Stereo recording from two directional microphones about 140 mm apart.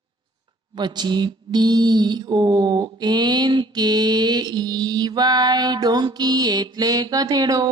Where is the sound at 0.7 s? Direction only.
30° right (ahead or behind).